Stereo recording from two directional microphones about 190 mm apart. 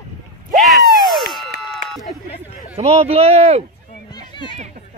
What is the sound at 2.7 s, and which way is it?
Speech, 35° right (ahead or behind).